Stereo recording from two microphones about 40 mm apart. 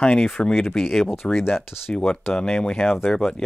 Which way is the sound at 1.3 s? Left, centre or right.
Left.